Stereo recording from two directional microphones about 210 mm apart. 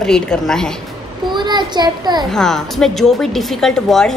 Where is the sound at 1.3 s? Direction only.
20° right (ahead or behind).